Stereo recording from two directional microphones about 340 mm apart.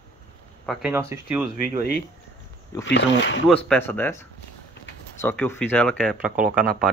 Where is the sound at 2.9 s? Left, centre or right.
Left.